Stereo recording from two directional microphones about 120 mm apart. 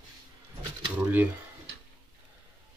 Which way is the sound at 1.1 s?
15° right (ahead or behind).